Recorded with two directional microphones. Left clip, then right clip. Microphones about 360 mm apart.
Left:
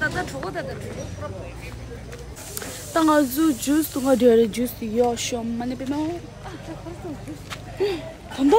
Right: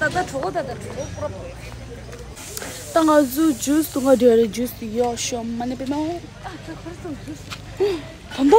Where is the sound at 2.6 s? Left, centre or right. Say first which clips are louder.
Right 3 dB; centre.